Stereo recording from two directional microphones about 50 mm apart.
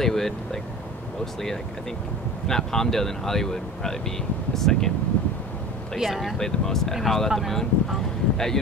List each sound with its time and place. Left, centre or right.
0.0 s speech: centre
5.2 s wind: left
5.9 s speech: centre
6.3 s speech: centre